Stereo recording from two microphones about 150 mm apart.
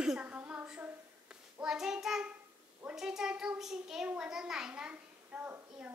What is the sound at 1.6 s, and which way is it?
Child singing, 5° right (ahead or behind).